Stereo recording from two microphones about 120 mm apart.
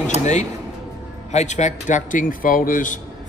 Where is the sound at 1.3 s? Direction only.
75° left (ahead or behind); by 2.2 s 90° left.